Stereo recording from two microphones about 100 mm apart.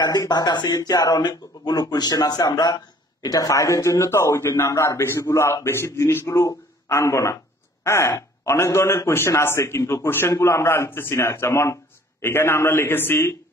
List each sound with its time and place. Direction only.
0.0 s speech: 40° left (ahead or behind); by 13.3 s 20° left (ahead or behind)